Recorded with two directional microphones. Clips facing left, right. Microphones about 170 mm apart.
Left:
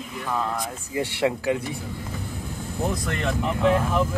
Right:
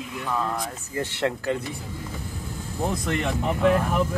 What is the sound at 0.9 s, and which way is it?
Speech, 10° left (ahead or behind).